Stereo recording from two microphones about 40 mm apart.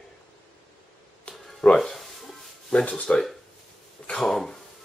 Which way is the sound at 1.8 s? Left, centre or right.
Centre.